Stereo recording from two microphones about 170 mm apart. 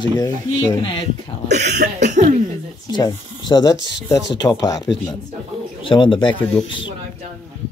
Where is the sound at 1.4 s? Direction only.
45° right (ahead or behind).